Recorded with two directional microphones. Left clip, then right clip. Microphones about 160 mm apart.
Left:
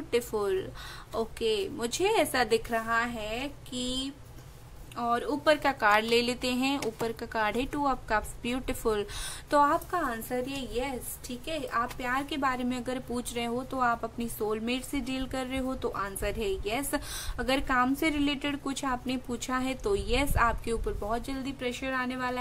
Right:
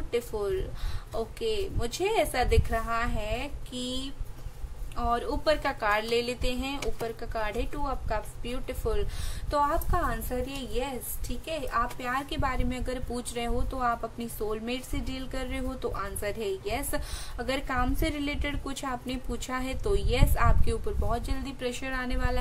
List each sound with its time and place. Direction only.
0.1 s a woman's voice: 25° left (ahead or behind)
9.8 s a woman's voice: 10° left (ahead or behind)